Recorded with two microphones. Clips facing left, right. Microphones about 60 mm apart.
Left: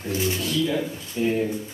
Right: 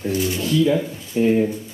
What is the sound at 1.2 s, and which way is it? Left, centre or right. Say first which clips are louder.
Speech: right 6 dB; right.